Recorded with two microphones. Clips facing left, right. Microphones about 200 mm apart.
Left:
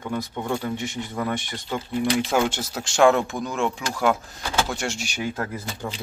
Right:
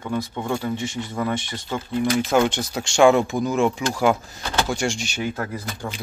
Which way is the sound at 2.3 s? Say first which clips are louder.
Right 3 dB; 5° left (ahead or behind).